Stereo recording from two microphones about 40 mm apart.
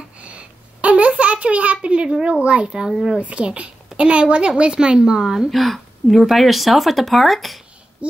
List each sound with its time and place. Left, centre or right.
0.2 s a sound: right
2.2 s a woman's voice: right
2.9 s speech: centre
3.2 s a woman's voice: right; by 5.5 s centre
5.5 s speech: centre
8.0 s a child's voice: right